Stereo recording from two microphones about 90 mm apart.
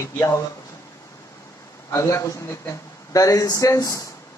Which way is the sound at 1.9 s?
30° left (ahead or behind).